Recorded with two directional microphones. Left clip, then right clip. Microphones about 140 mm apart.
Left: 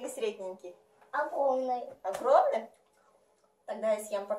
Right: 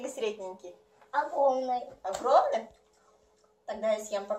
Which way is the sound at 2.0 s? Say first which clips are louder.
Even; 15° left (ahead or behind).